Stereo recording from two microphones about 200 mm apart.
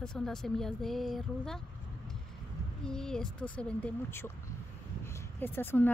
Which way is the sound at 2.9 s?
5° left (ahead or behind).